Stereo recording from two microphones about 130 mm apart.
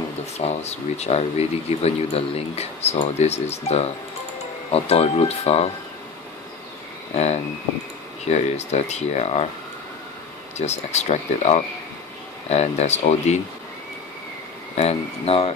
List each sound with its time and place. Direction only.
0.4 s speech: 55° left (ahead or behind)
8.3 s speech: 60° left (ahead or behind)
10.6 s speech: 55° left (ahead or behind)
14.8 s speech: 50° left (ahead or behind)